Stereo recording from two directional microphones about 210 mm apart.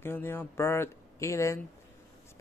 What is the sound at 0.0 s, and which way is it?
Speech, 10° left (ahead or behind).